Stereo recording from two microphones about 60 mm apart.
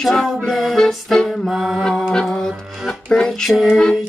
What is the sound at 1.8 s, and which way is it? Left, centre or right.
Music, centre.